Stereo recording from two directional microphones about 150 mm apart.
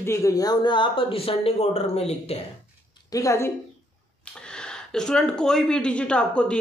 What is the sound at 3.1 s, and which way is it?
Speech, 20° left (ahead or behind).